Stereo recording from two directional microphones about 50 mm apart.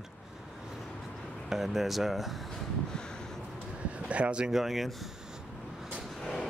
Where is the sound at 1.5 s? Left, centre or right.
Centre.